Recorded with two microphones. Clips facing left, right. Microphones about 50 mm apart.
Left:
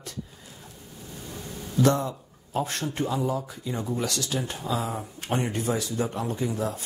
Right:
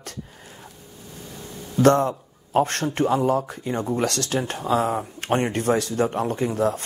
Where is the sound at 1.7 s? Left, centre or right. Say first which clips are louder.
Right 6 dB; right.